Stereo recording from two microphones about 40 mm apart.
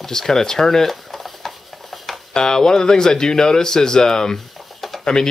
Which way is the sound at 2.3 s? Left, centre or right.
Centre.